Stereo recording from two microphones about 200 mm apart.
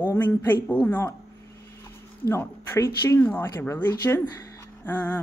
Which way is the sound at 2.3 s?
10° left (ahead or behind).